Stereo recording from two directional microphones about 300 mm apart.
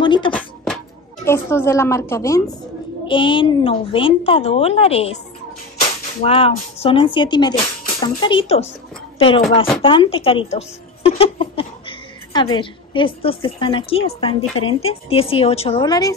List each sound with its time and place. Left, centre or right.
0.0 s a sound: centre
1.2 s a woman's voice: centre
9.8 s a woman's voice: centre